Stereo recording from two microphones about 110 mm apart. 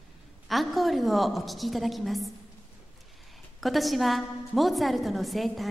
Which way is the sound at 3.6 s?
Centre (ahead or behind).